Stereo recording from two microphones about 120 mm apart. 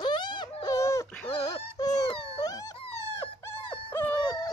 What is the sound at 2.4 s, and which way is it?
Wail, 30° left (ahead or behind).